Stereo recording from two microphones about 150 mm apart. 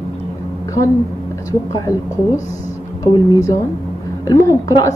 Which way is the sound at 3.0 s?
20° left (ahead or behind).